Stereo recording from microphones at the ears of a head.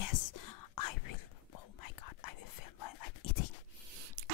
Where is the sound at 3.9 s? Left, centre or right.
Right.